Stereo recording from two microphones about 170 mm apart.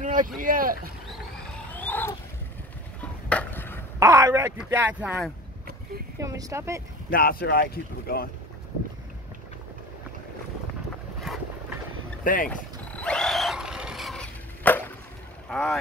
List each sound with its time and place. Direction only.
0.0 s boat: 50° right (ahead or behind)
0.4 s speech: 55° right (ahead or behind)
1.7 s wild animals: 10° left (ahead or behind)
3.0 s a sound: 10° left (ahead or behind)
4.0 s speech: 20° right (ahead or behind)
6.2 s speech: 20° right (ahead or behind)
7.1 s speech: 60° left (ahead or behind)
11.3 s vehicle: centre (ahead or behind)
12.2 s speech: 55° left (ahead or behind)
12.9 s a sound: 5° left (ahead or behind)
15.5 s speech: 5° left (ahead or behind)